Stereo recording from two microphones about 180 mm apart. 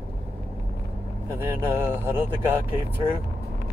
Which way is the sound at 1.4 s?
10° right (ahead or behind).